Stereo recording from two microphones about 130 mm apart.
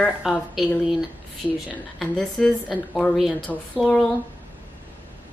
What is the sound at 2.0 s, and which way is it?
A woman's voice, 5° left (ahead or behind).